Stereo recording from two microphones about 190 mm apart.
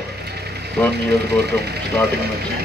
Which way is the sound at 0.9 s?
60° right (ahead or behind).